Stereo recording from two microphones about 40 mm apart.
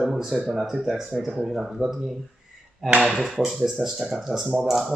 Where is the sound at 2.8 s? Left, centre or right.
Right.